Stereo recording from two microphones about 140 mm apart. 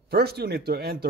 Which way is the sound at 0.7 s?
90° right.